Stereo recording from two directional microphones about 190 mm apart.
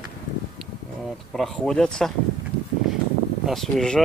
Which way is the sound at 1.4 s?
Centre (ahead or behind).